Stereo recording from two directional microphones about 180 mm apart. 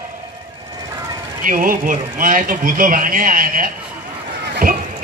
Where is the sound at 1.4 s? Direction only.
50° right (ahead or behind).